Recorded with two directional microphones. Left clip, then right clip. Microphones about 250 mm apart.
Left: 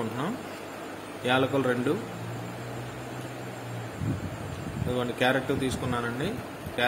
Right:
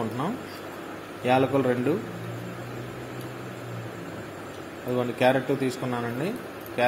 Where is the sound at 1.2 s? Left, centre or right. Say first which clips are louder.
Right 3 dB; centre.